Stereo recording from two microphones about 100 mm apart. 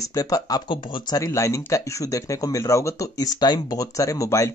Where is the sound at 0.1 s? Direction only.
40° left (ahead or behind).